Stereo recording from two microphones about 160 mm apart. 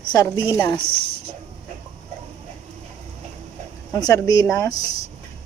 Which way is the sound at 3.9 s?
25° left (ahead or behind).